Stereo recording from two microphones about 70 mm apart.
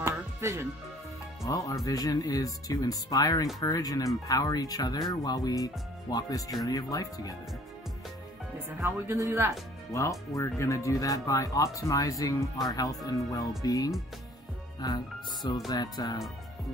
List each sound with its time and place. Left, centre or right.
0.0 s music: right
1.4 s speech: left
6.6 s speech: left
8.8 s speech: right
9.9 s speech: left